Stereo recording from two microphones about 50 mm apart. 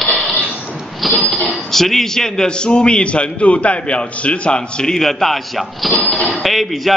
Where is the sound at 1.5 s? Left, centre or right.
Centre.